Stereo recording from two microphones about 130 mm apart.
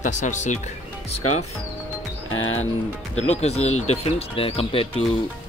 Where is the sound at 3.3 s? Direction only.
55° left (ahead or behind).